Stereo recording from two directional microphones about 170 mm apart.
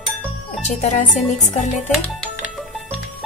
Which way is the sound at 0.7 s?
45° left (ahead or behind).